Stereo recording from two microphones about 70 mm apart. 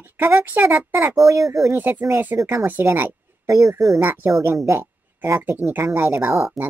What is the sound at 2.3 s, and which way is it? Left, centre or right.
Speech, right.